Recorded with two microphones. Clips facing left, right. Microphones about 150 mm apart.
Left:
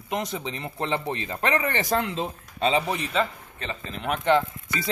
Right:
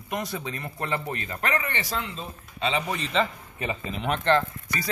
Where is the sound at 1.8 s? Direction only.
55° left (ahead or behind).